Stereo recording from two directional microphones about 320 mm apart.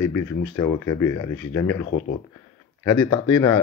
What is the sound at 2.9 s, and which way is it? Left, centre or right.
Speech, centre.